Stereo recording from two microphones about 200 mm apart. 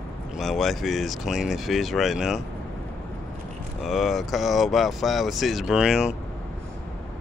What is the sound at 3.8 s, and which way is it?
Speech, centre (ahead or behind).